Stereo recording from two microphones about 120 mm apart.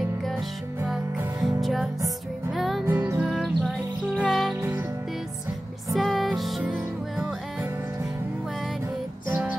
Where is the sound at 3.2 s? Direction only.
Centre (ahead or behind).